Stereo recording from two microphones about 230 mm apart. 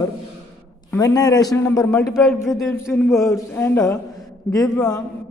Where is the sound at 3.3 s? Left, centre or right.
Centre.